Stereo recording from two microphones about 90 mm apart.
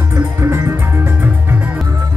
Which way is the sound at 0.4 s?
30° right (ahead or behind).